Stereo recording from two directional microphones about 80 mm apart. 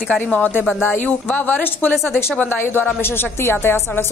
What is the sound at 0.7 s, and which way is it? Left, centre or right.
Speech, left.